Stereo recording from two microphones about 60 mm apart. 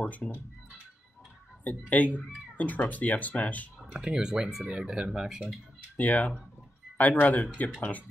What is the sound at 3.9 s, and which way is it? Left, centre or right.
Speech, centre.